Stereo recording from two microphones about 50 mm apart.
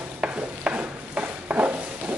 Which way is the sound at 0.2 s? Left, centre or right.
Right.